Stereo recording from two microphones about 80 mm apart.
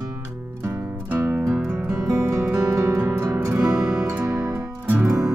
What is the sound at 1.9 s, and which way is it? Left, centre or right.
Music, centre.